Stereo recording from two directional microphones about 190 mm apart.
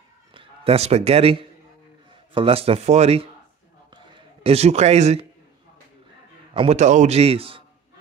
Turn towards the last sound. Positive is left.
turn(degrees=-30)  # may be behind; listen again after turning